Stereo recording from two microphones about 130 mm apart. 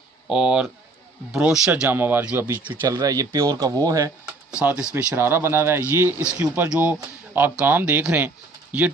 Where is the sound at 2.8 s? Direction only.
25° right (ahead or behind).